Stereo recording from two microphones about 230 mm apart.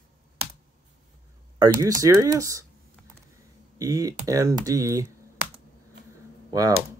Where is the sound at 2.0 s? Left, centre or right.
Centre.